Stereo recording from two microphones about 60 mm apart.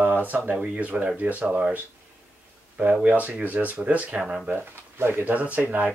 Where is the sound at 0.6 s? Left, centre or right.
Right.